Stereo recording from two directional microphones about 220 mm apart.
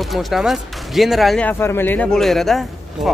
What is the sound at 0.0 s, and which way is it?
Speech, centre (ahead or behind).